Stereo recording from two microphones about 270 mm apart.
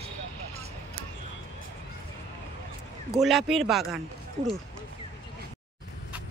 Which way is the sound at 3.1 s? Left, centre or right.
Centre.